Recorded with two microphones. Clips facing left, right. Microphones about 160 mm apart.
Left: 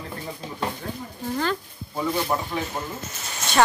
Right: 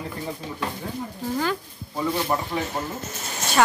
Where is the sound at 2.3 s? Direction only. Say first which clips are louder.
Even; centre (ahead or behind).